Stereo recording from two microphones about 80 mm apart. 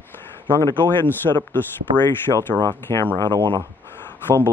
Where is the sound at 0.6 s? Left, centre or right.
Left.